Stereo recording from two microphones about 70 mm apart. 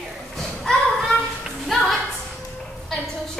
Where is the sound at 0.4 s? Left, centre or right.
Centre.